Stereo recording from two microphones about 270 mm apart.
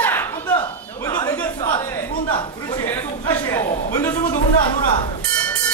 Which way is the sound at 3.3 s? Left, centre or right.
Centre.